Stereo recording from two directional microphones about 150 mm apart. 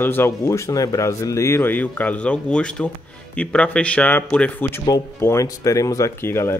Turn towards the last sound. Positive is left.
turn(degrees=15)  # may be behind; listen again after turning